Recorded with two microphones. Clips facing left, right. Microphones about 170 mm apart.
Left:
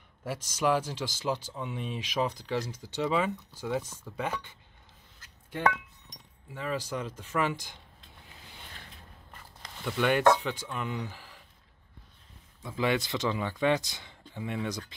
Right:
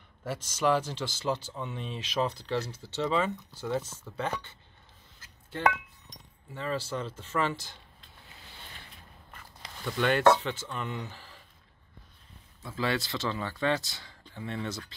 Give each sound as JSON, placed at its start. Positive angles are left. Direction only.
{"t": 0.2, "sound": "speech", "side_deg": 10}
{"t": 9.8, "sound": "speech", "side_deg": 10}
{"t": 12.6, "sound": "speech", "side_deg": 15}